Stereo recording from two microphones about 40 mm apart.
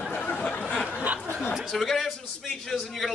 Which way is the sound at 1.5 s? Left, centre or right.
Centre.